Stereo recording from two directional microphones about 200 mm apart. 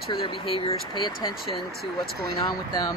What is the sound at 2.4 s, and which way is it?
Speech, 20° left (ahead or behind).